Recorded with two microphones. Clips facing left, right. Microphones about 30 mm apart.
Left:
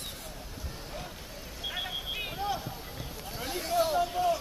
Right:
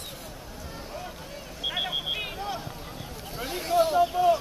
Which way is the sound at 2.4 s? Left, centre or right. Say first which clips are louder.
Even; centre.